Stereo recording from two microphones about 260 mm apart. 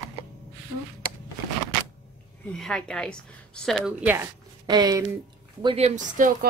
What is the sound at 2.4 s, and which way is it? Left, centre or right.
A woman's voice, centre.